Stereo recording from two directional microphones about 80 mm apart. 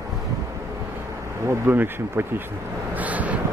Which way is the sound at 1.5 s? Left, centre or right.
Right.